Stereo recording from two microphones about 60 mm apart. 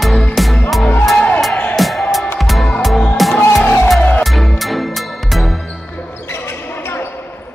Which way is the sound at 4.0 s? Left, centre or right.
Left.